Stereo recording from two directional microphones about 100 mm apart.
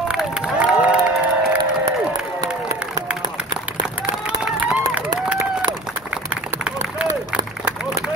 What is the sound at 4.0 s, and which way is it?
Run, 15° right (ahead or behind).